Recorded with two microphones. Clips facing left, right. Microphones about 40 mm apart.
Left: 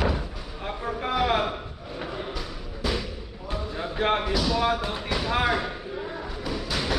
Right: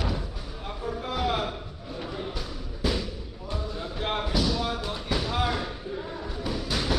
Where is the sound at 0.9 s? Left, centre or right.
Left.